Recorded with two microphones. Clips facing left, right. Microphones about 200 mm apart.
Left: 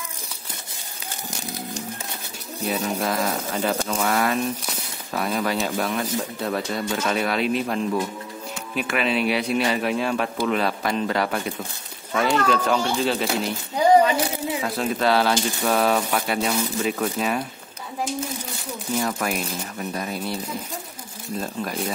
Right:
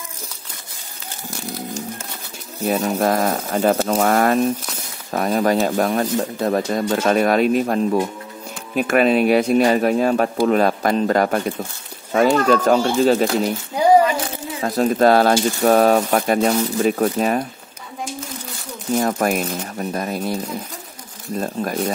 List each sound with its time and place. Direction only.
2.6 s speech: 50° right (ahead or behind)
14.6 s speech: 45° right (ahead or behind)
18.9 s speech: 45° right (ahead or behind)
21.4 s speech: 45° right (ahead or behind)